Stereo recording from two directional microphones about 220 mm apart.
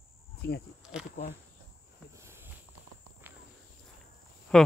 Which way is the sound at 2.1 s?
10° right (ahead or behind).